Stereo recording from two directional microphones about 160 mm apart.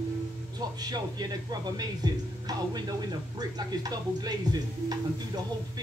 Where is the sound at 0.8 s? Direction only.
25° right (ahead or behind).